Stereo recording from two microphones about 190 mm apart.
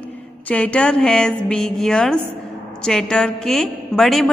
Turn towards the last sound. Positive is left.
turn(degrees=0)  # may be behind; listen again after turning